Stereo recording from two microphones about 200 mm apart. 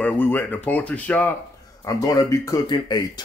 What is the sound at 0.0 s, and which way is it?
Speech, 10° left (ahead or behind).